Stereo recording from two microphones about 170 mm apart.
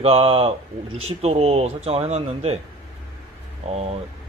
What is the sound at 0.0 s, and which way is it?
Speech, 35° right (ahead or behind).